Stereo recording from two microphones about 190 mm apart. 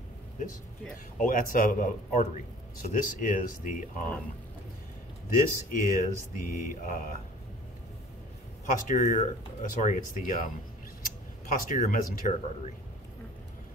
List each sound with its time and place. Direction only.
1.2 s a man's voice: 45° left (ahead or behind)
5.3 s a man's voice: 45° left (ahead or behind)
8.7 s a man's voice: 40° left (ahead or behind)